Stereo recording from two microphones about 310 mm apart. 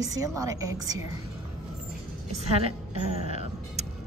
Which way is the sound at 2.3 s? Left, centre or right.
Centre.